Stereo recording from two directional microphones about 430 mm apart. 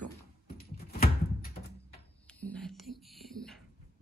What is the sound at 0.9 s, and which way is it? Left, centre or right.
Thunk, left.